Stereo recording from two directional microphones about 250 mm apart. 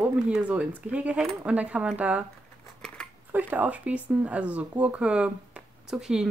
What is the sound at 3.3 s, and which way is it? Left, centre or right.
Speech, centre.